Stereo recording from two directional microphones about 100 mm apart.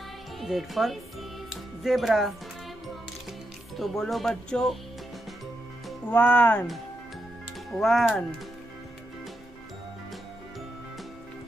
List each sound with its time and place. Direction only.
0.4 s speech: centre (ahead or behind)
3.7 s speech: centre (ahead or behind)
6.0 s speech: 15° left (ahead or behind)
7.7 s speech: centre (ahead or behind)